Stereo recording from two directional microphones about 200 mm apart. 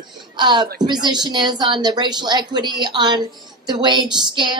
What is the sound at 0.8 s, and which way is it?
A woman's voice, 20° right (ahead or behind).